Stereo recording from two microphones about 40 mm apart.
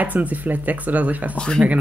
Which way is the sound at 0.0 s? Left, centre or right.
Right.